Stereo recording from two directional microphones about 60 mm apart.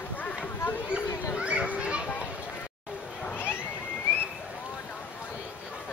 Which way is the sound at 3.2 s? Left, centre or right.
Left.